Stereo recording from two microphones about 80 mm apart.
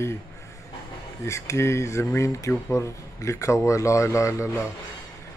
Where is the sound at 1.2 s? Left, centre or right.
Left.